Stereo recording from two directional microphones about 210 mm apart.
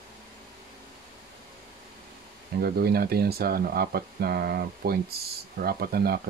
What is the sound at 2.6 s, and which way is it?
Speech, 45° right (ahead or behind).